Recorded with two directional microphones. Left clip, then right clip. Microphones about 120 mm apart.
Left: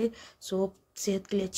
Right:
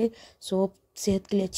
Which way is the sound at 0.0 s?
30° right (ahead or behind).